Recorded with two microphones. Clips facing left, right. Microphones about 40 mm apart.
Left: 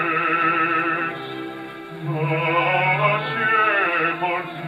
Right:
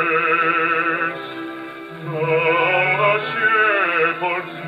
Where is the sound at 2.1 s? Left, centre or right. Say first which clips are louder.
Right 4 dB; centre.